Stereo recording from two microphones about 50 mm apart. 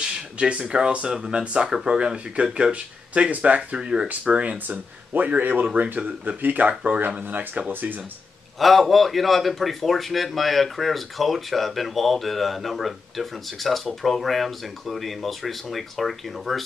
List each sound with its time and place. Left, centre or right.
0.0 s speech: centre
1.4 s speech: right
1.7 s speech: centre; by 4.6 s right
4.6 s speech: right
8.5 s a man's voice: centre